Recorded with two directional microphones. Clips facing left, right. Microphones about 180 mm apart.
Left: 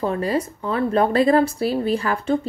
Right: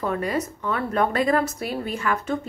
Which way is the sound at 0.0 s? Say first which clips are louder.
Left 3 dB; 30° left (ahead or behind).